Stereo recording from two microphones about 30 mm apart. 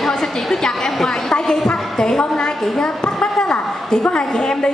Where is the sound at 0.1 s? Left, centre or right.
Centre.